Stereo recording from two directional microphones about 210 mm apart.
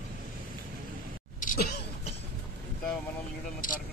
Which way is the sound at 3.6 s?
40° left (ahead or behind).